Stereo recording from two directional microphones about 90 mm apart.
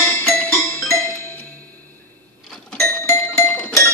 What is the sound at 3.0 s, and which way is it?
Music, 25° left (ahead or behind).